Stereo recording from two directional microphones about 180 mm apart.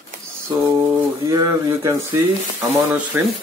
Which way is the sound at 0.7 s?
20° right (ahead or behind).